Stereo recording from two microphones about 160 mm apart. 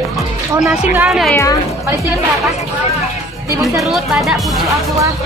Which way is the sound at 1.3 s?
20° left (ahead or behind).